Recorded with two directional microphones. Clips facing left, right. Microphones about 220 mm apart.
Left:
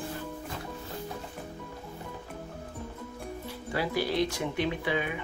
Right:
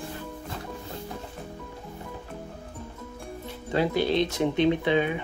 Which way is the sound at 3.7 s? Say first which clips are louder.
Right 6 dB; 25° right (ahead or behind).